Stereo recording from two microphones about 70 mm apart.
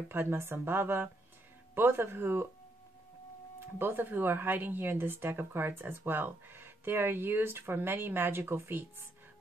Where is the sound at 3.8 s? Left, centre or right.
Right.